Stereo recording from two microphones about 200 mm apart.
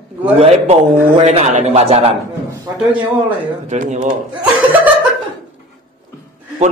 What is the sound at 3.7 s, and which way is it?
Speech, 40° right (ahead or behind).